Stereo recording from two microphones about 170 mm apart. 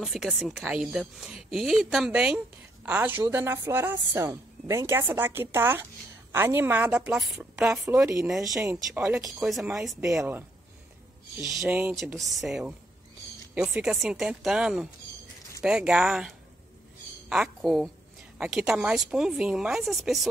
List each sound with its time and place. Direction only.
0.0 s speech: centre (ahead or behind)
8.5 s speech: 15° right (ahead or behind)
9.3 s speech: centre (ahead or behind)